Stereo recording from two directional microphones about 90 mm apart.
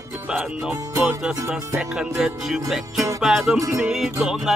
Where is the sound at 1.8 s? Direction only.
5° right (ahead or behind).